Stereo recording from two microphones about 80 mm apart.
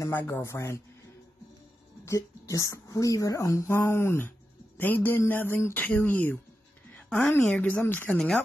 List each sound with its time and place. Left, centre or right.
0.1 s speech: left
2.0 s speech: left
6.9 s a sound: centre
7.4 s speech: centre
7.8 s speech: left
8.1 s speech: centre